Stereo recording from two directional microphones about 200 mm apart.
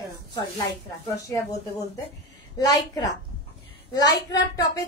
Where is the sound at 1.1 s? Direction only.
15° left (ahead or behind).